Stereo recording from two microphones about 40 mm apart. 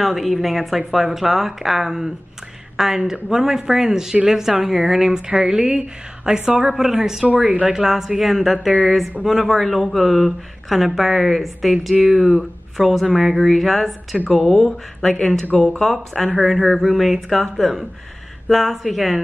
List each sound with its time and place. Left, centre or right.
0.0 s a woman's voice: centre
14.3 s speech: centre
15.5 s speech: left
15.8 s speech: centre
16.3 s speech: centre